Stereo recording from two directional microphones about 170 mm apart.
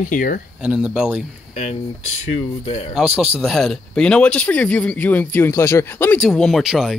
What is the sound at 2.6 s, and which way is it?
Speech, 35° left (ahead or behind).